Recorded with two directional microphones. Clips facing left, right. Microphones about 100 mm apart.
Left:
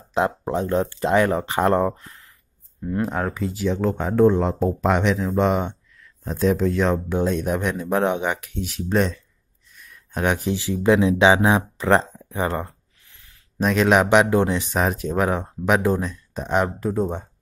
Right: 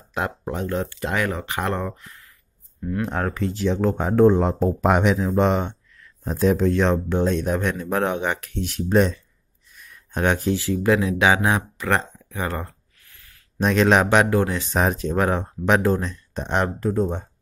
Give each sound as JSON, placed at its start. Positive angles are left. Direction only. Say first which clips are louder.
{"t": 0.1, "sound": "speech", "louder": "left 5 dB", "side_deg": 25}
{"t": 3.0, "sound": "speech", "louder": "left 1 dB", "side_deg": 5}
{"t": 5.6, "sound": "a sound", "louder": "left 1 dB", "side_deg": 10}
{"t": 6.2, "sound": "speech", "louder": "right 1 dB", "side_deg": -5}
{"t": 8.6, "sound": "speech", "louder": "right 3 dB", "side_deg": 0}
{"t": 10.1, "sound": "speech", "louder": "right 1 dB", "side_deg": 10}
{"t": 13.6, "sound": "speech", "louder": "even", "side_deg": 5}
{"t": 14.8, "sound": "speech", "louder": "right 2 dB", "side_deg": 5}